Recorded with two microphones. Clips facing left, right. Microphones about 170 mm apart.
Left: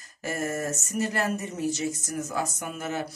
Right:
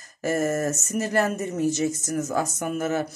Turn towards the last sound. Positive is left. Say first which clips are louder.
# right 6 dB
turn(degrees=-45)  # may be behind; listen again after turning